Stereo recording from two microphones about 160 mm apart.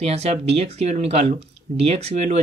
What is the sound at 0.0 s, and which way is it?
Speech, 40° right (ahead or behind).